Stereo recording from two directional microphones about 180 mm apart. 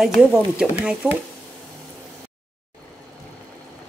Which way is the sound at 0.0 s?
Centre (ahead or behind).